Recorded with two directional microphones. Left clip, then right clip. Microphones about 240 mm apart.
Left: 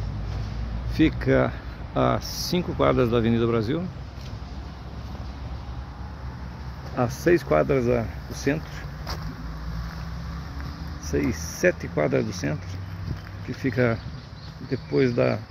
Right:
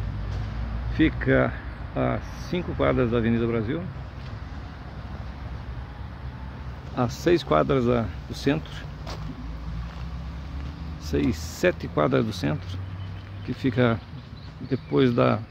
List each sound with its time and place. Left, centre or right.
0.9 s speech: centre
7.0 s speech: centre
11.1 s speech: centre
13.6 s speech: centre